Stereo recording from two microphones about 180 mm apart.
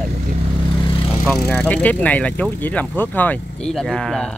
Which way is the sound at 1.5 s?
10° left (ahead or behind).